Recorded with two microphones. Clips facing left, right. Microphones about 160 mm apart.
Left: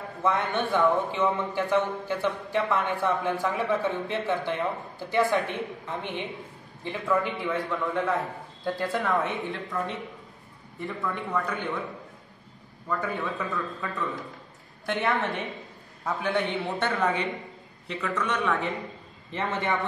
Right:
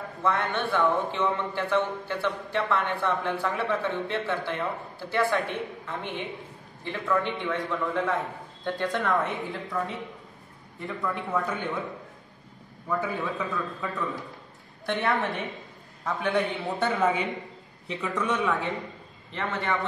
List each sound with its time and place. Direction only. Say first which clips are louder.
0.2 s a man's voice: left 1 dB; 15° left (ahead or behind); by 11.5 s 5° right (ahead or behind)
12.8 s a man's voice: right 1 dB; 5° right (ahead or behind)
19.3 s a man's voice: left 1 dB; 15° left (ahead or behind)